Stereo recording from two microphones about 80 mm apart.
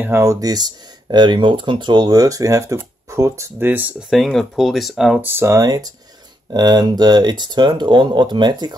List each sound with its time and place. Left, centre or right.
0.0 s speech: right
0.3 s speech: right
3.6 s speech: right
4.1 s speech: centre
5.2 s speech: right
5.5 s speech: right